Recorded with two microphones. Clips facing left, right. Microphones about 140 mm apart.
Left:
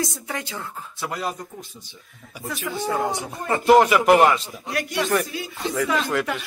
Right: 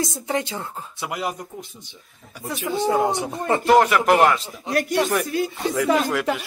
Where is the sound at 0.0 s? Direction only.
25° right (ahead or behind).